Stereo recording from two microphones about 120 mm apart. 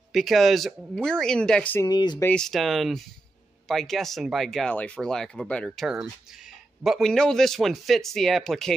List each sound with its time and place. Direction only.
0.1 s speech: centre (ahead or behind)
1.9 s speech: 35° left (ahead or behind)
2.3 s speech: 5° left (ahead or behind)